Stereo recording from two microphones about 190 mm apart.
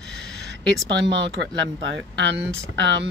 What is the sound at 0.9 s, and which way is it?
Speech, 65° right (ahead or behind).